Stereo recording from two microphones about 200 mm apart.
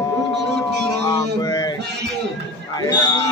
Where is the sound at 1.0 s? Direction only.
15° left (ahead or behind).